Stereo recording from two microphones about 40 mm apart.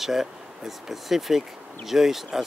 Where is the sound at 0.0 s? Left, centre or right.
Centre.